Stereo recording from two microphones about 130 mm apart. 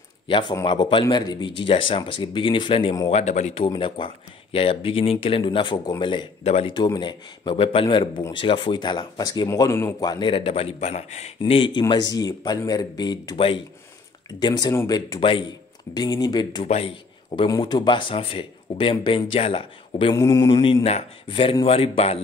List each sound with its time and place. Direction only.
0.3 s speech: 35° left (ahead or behind)
3.1 s speech: 60° left (ahead or behind)
3.6 s speech: 40° left (ahead or behind)
6.4 s speech: 55° left (ahead or behind)
6.7 s speech: 35° left (ahead or behind)
10.0 s speech: 35° left (ahead or behind)
11.9 s speech: 30° left (ahead or behind)
14.4 s speech: 30° left (ahead or behind)
16.6 s speech: 50° left (ahead or behind)
17.5 s speech: 30° left (ahead or behind)
20.2 s speech: 25° left (ahead or behind)
20.4 s speech: 40° left (ahead or behind)